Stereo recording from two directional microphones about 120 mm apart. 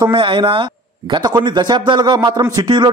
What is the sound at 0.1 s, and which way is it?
Speech, 45° right (ahead or behind).